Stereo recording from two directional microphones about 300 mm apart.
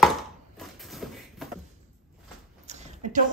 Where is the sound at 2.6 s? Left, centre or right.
Right.